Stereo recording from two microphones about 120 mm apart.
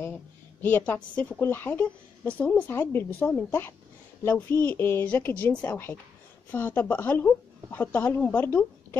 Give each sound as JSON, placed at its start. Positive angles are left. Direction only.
{"t": 0.0, "sound": "a woman's voice", "side_deg": 15}